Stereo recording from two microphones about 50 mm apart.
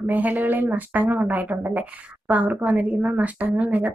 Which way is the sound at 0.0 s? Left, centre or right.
Right.